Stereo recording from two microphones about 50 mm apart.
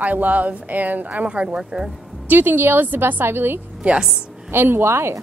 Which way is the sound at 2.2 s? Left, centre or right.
Right.